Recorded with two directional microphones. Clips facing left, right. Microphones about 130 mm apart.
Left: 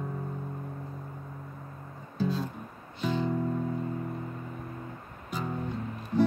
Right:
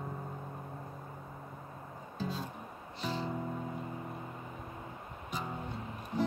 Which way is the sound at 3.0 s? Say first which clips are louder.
Left 7 dB; 35° right (ahead or behind).